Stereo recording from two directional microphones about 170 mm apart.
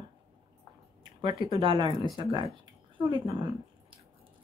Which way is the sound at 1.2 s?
30° right (ahead or behind).